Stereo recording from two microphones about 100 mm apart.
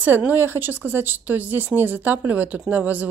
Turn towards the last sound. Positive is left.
turn(degrees=-15)  # may be behind; listen again after turning